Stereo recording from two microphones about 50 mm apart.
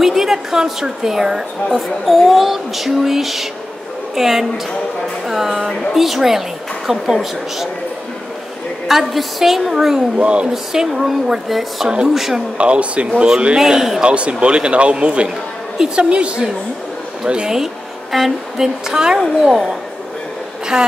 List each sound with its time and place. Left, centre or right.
0.0 s a woman's voice: centre
8.8 s a woman's voice: centre
10.1 s speech: right
10.5 s a woman's voice: centre
12.5 s a woman's voice: right; by 14.0 s centre
14.0 s a woman's voice: right
20.7 s a woman's voice: centre